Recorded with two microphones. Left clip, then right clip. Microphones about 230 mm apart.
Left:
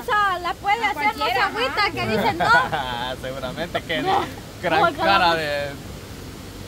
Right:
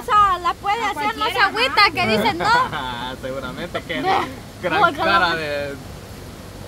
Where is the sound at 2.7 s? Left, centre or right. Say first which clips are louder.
Left 1 dB; left.